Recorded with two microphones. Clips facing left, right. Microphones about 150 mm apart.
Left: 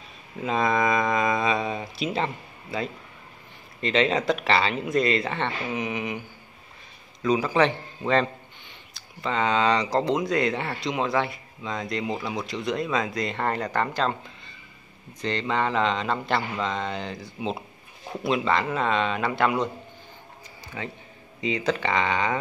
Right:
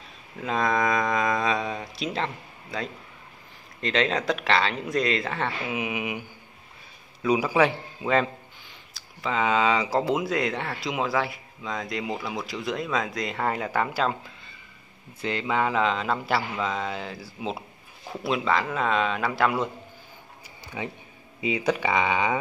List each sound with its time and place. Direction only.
0.4 s a sound: centre (ahead or behind)
3.8 s a man's voice: centre (ahead or behind)
15.2 s a man's voice: 5° right (ahead or behind)
20.8 s speech: 15° right (ahead or behind)